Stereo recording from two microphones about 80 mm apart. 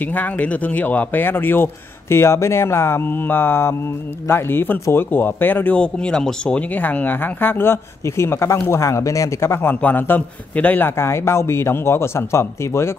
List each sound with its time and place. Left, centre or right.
0.0 s a man's voice: left